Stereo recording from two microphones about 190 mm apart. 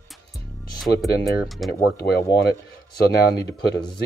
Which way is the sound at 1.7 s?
55° left (ahead or behind).